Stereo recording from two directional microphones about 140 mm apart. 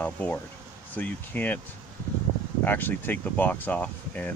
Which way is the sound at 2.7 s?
15° left (ahead or behind).